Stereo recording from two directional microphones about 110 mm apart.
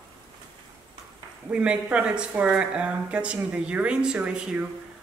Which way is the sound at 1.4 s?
10° right (ahead or behind).